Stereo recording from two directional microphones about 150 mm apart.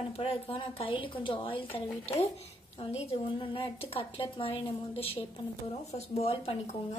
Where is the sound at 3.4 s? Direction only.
35° left (ahead or behind).